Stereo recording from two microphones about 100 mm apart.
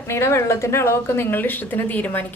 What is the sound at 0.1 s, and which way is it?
A woman's voice, 25° left (ahead or behind).